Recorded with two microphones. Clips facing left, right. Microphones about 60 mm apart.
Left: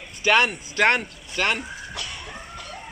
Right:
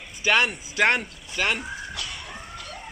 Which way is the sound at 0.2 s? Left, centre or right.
Centre.